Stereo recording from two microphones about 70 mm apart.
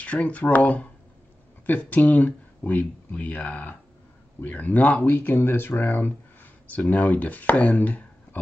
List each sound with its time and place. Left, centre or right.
0.0 s speech: centre